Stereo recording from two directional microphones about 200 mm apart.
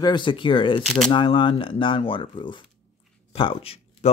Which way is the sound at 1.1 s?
25° left (ahead or behind).